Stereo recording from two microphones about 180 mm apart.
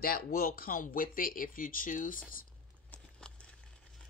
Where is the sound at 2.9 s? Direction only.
5° left (ahead or behind).